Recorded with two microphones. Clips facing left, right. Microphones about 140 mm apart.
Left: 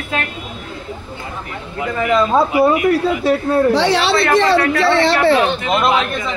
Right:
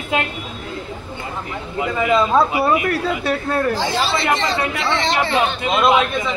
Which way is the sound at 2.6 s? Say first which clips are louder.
Left 5 dB; 5° left (ahead or behind).